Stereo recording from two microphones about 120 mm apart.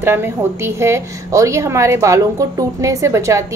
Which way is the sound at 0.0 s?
20° right (ahead or behind).